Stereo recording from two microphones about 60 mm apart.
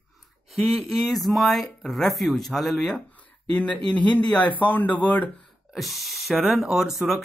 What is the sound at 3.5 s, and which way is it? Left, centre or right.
Speech, centre.